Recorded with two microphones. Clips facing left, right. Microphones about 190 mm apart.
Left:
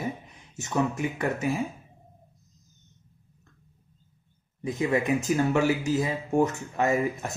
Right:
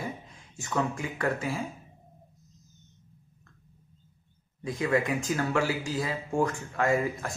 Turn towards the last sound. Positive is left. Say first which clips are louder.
# left 1 dB
turn(degrees=20)  # may be behind; listen again after turning